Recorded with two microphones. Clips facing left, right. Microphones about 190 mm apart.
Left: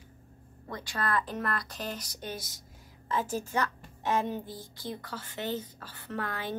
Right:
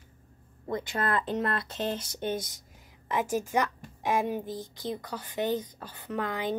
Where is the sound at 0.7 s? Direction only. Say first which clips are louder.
Right 3 dB; 20° right (ahead or behind).